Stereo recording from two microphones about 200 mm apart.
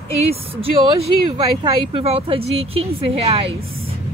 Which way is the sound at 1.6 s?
30° right (ahead or behind).